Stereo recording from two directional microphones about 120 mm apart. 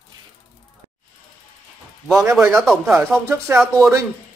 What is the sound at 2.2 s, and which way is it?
Speech, 20° right (ahead or behind).